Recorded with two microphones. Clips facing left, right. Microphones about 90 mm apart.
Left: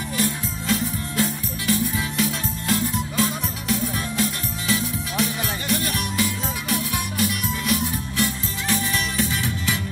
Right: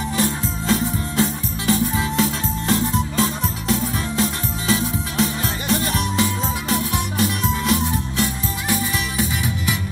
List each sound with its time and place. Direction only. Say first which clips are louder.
0.2 s music: right 2 dB; 25° right (ahead or behind)
8.6 s music: right 1 dB; 15° right (ahead or behind)